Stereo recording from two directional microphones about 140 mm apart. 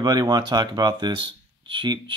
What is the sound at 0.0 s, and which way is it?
Speech, 30° right (ahead or behind).